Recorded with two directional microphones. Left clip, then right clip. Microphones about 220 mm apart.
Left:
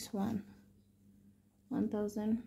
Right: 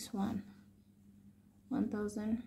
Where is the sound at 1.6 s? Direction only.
30° left (ahead or behind).